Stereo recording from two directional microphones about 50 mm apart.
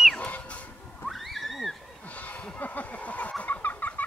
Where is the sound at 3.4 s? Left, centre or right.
Left.